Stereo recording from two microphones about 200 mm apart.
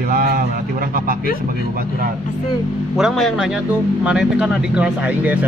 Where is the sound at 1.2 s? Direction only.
45° left (ahead or behind).